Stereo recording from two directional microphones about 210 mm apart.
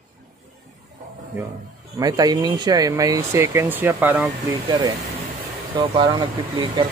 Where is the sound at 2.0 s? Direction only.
15° right (ahead or behind).